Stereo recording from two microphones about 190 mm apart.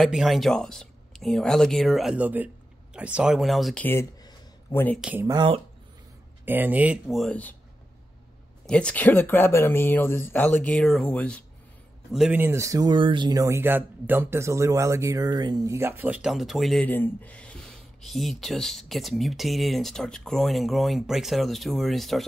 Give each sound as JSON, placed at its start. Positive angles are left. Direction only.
{"t": 0.0, "sound": "speech", "side_deg": 0}
{"t": 3.8, "sound": "a sound", "side_deg": 15}
{"t": 5.2, "sound": "speech", "side_deg": -20}
{"t": 8.6, "sound": "speech", "side_deg": 5}
{"t": 12.1, "sound": "speech", "side_deg": -5}